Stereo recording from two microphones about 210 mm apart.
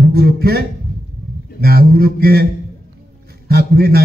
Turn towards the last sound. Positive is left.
turn(degrees=-45)  # may be behind; listen again after turning